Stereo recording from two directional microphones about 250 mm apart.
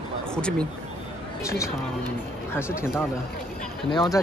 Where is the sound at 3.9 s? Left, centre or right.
Centre.